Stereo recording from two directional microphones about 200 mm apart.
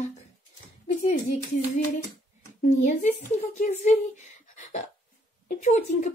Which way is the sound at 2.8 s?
40° left (ahead or behind).